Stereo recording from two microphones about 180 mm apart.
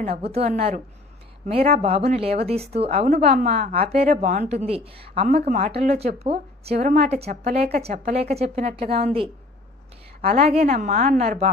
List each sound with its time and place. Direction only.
0.1 s a woman's voice: 35° right (ahead or behind)
6.7 s a woman's voice: 50° right (ahead or behind)
7.2 s a woman's voice: 35° right (ahead or behind)